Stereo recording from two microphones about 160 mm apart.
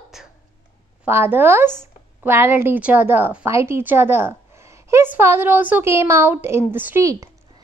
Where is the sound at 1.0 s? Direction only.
15° right (ahead or behind).